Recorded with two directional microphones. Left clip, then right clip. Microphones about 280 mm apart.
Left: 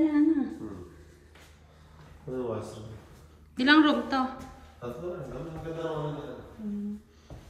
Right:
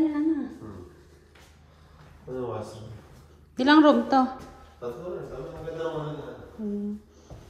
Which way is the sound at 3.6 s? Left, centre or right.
Centre.